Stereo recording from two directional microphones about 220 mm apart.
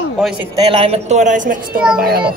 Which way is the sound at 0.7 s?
25° right (ahead or behind).